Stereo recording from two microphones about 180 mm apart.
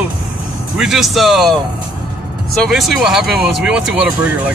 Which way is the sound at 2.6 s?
Centre (ahead or behind).